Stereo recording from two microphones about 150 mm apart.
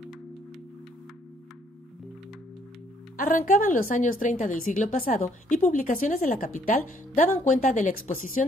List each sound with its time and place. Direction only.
3.2 s a woman's voice: 65° left (ahead or behind)